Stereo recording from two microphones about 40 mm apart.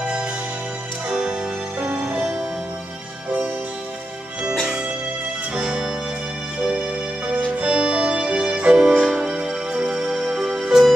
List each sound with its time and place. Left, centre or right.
1.0 s music: centre
1.8 s music: right
2.1 s music: centre
5.5 s music: centre
10.7 s music: centre